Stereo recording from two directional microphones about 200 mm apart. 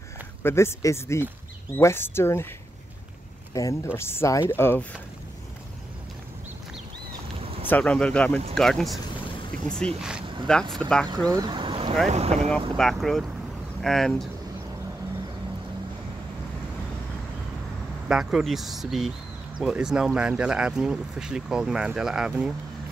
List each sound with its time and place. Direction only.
0.4 s speech: 10° left (ahead or behind)
3.5 s speech: 15° left (ahead or behind)
7.6 s speech: 5° left (ahead or behind)
11.2 s boat: 20° right (ahead or behind)
12.1 s speech: 35° right (ahead or behind)
12.4 s speech: 5° left (ahead or behind)
18.0 s speech: 5° right (ahead or behind)